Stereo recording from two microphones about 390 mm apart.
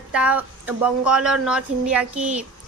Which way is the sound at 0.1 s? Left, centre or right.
Centre.